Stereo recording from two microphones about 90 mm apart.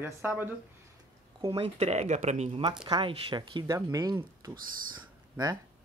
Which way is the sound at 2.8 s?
65° right (ahead or behind).